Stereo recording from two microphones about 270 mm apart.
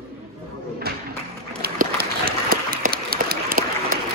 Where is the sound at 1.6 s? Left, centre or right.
Right.